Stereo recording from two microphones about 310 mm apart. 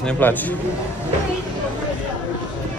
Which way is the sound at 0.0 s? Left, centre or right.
Centre.